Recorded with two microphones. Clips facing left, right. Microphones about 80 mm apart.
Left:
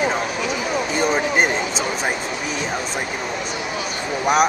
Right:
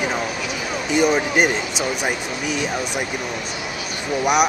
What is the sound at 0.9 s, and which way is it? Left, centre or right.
Speech, left.